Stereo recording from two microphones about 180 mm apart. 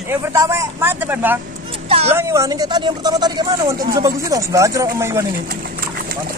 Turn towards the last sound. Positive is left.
turn(degrees=-15)  # may be behind; listen again after turning